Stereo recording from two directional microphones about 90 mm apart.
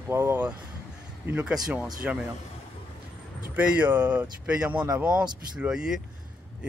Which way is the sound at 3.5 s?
15° right (ahead or behind).